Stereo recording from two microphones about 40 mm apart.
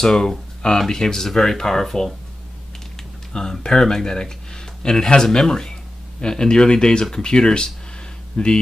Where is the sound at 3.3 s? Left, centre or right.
Centre.